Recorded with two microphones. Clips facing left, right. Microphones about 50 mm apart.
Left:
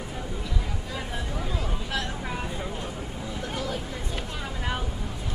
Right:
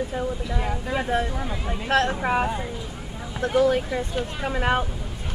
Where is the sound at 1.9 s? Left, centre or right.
Right.